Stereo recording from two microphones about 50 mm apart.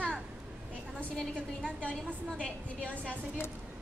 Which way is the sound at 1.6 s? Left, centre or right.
Left.